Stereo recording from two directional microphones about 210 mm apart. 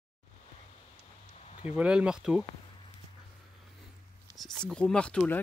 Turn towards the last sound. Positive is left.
turn(degrees=5)  # may be behind; listen again after turning